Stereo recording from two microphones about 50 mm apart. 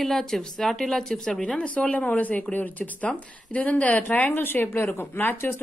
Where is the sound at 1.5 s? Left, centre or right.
Left.